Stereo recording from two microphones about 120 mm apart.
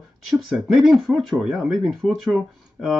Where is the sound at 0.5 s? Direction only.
5° right (ahead or behind).